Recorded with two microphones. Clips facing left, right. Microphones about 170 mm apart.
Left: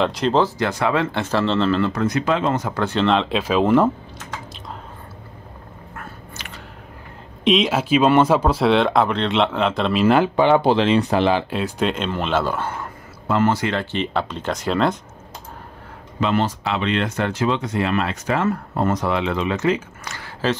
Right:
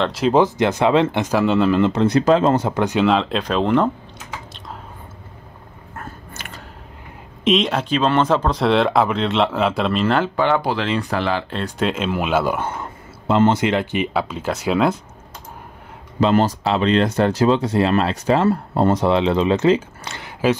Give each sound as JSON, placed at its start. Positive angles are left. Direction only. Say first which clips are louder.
{"t": 0.0, "sound": "speech", "louder": "right 1 dB", "side_deg": 0}
{"t": 0.3, "sound": "speech", "louder": "right 7 dB", "side_deg": -20}
{"t": 1.9, "sound": "speech", "louder": "right 5 dB", "side_deg": -25}
{"t": 2.7, "sound": "speech", "louder": "right 2 dB", "side_deg": -15}
{"t": 5.9, "sound": "biting", "louder": "right 3 dB", "side_deg": -45}
{"t": 7.4, "sound": "speech", "louder": "even", "side_deg": 0}
{"t": 10.0, "sound": "speech", "louder": "left 5 dB", "side_deg": 15}
{"t": 11.5, "sound": "speech", "louder": "even", "side_deg": 0}
{"t": 16.2, "sound": "speech", "louder": "right 4 dB", "side_deg": -40}